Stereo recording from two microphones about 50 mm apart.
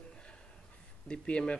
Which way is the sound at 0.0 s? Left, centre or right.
Left.